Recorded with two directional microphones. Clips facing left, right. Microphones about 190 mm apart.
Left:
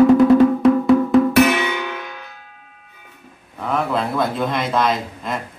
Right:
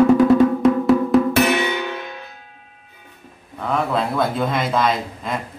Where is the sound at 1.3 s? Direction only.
25° right (ahead or behind).